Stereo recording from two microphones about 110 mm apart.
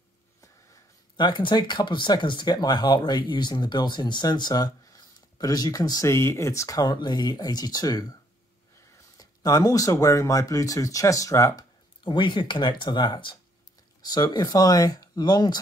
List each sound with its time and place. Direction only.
1.1 s speech: 45° left (ahead or behind); by 11.6 s 30° left (ahead or behind)
12.0 s speech: 45° left (ahead or behind)